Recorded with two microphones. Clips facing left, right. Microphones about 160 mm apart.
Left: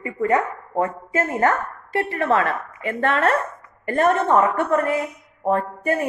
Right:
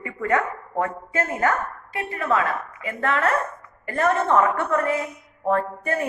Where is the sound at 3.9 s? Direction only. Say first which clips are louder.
Left 2 dB; 20° left (ahead or behind).